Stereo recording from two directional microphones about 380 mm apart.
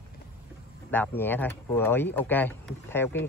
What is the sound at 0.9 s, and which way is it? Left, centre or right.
Speech, centre.